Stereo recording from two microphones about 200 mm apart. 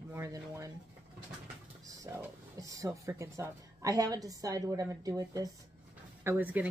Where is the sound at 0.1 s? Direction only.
15° right (ahead or behind).